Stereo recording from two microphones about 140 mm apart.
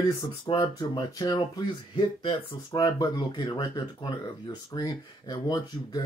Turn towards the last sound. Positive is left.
turn(degrees=30)  # may be behind; listen again after turning